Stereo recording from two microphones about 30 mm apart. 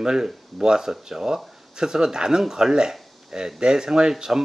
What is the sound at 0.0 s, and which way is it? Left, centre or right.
Speech, right.